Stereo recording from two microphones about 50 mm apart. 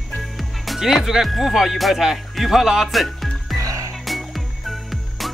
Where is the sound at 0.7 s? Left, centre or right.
Centre.